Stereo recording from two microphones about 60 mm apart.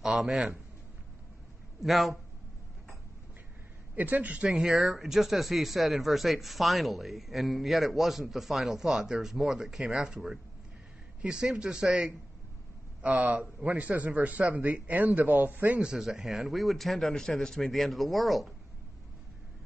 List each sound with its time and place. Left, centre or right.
0.0 s a sound: centre
1.8 s speech: centre
3.9 s a man's voice: right
4.5 s speech: centre
13.0 s a man's voice: right
15.8 s speech: centre